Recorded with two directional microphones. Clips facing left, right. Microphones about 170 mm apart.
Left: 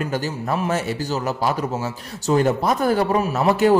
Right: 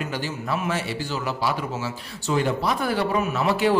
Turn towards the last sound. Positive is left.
turn(degrees=45)  # may be behind; listen again after turning